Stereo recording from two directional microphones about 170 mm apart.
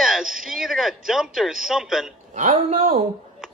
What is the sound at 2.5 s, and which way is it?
Speech, 45° right (ahead or behind).